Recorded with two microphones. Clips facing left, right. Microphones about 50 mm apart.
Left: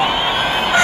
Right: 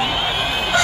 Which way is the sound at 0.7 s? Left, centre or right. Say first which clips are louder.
Left 3 dB; left.